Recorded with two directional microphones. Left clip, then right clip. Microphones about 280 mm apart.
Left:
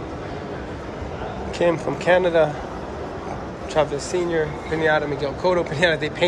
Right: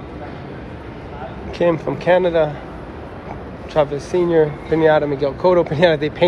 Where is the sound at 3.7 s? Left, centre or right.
Centre.